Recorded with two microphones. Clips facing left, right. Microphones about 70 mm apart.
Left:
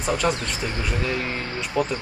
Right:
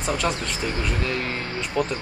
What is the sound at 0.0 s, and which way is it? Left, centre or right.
Speech, centre.